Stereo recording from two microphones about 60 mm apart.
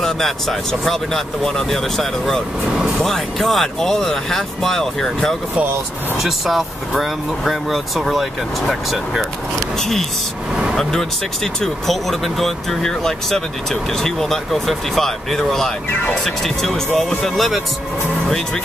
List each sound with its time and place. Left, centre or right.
0.0 s speech: centre
10.5 s vehicle: centre
10.8 s speech: centre